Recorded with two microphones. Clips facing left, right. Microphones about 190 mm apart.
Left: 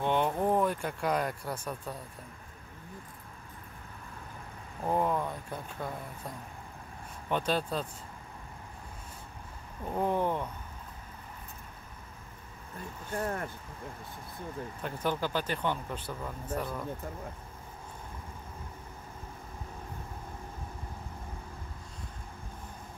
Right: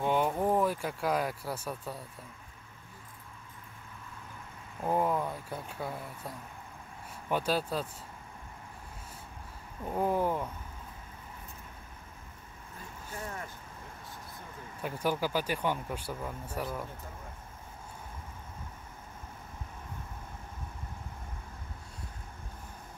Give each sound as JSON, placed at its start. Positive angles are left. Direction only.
{"t": 0.0, "sound": "speech", "side_deg": -5}
{"t": 4.8, "sound": "speech", "side_deg": -5}
{"t": 9.8, "sound": "speech", "side_deg": -5}
{"t": 13.1, "sound": "speech", "side_deg": 55}
{"t": 14.8, "sound": "speech", "side_deg": -10}